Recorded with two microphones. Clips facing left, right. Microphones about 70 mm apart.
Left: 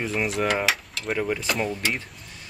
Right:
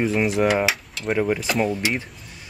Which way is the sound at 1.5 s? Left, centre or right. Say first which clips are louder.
Right 4 dB; centre.